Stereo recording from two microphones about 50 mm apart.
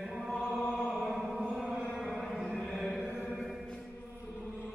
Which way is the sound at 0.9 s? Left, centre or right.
Centre.